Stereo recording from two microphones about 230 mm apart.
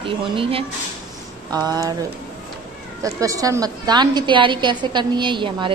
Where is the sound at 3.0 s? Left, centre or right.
Centre.